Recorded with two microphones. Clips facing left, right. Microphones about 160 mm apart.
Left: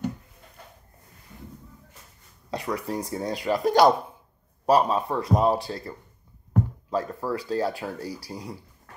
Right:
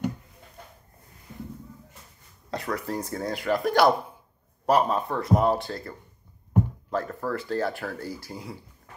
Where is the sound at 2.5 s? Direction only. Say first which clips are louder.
Left 1 dB; 15° left (ahead or behind).